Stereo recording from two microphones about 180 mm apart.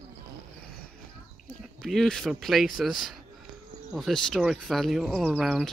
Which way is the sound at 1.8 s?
Centre (ahead or behind).